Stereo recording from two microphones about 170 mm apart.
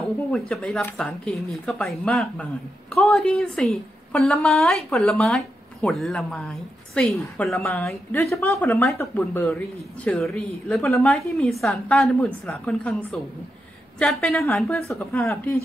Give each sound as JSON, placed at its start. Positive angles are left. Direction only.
{"t": 0.3, "sound": "a woman's voice", "side_deg": 5}
{"t": 7.5, "sound": "a woman's voice", "side_deg": 15}
{"t": 14.4, "sound": "speech", "side_deg": 15}